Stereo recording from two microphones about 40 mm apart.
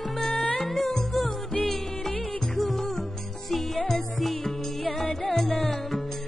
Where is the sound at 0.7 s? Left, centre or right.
Centre.